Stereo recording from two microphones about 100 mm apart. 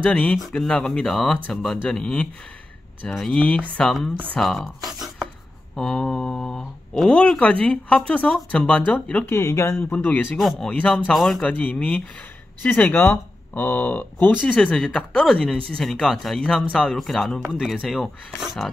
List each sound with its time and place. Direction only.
0.0 s speech: 10° left (ahead or behind)
4.4 s a sound: centre (ahead or behind)
5.8 s speech: 5° left (ahead or behind)
9.4 s speech: 25° left (ahead or behind)
10.4 s speech: 5° left (ahead or behind)
11.4 s speech: 15° left (ahead or behind); by 18.7 s centre (ahead or behind)